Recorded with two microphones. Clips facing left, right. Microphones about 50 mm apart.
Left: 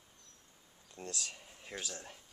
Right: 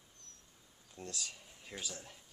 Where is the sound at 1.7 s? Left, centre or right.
Centre.